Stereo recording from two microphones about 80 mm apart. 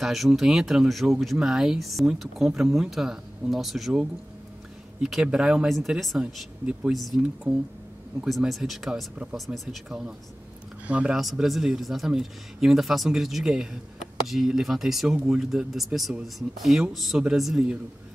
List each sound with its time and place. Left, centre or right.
0.0 s speech: centre
5.7 s speech: centre
7.5 s speech: centre
8.3 s speech: centre
11.1 s speech: centre